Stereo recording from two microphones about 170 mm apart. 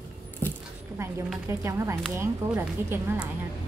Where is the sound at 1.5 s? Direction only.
15° right (ahead or behind).